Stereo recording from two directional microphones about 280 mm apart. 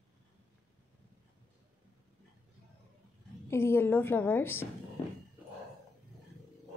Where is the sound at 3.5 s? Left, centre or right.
Centre.